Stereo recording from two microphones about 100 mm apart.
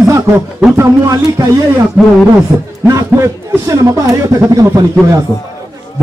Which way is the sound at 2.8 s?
30° right (ahead or behind).